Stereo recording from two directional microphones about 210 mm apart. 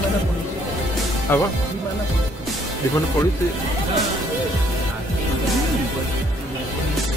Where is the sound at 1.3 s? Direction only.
10° left (ahead or behind).